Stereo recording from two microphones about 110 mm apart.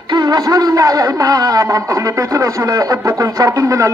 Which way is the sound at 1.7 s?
30° right (ahead or behind).